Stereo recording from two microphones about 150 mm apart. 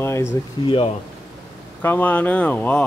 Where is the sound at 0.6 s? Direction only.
35° left (ahead or behind).